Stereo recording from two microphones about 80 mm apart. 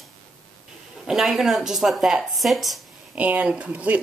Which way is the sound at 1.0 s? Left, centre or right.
Centre.